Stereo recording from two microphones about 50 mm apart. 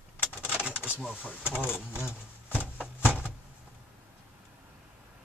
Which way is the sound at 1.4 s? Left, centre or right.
Left.